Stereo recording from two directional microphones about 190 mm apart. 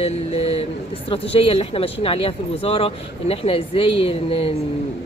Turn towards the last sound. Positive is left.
turn(degrees=30)  # may be behind; listen again after turning